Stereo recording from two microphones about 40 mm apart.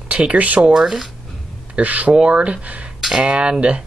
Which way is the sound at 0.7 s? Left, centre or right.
Centre.